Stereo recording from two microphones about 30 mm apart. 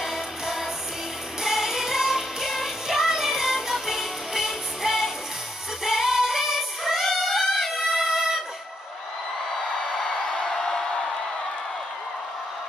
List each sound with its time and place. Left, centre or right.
0.0 s music: centre
6.8 s music: centre
7.7 s music: centre
9.8 s a sound: left